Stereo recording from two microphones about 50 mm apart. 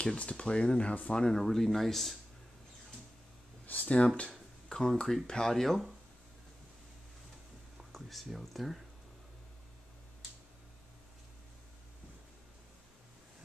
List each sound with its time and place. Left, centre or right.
0.0 s speech: left
1.4 s speech: centre
3.6 s speech: left
4.6 s speech: centre
7.7 s speech: centre